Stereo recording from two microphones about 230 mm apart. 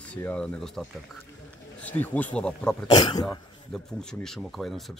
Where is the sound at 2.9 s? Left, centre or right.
Centre.